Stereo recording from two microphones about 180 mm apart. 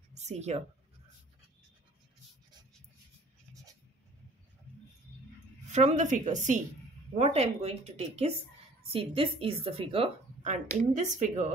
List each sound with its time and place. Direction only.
0.1 s speech: 40° right (ahead or behind)
5.7 s speech: 40° right (ahead or behind)